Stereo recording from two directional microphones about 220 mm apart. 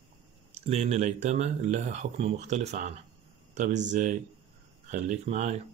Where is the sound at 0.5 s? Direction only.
30° right (ahead or behind).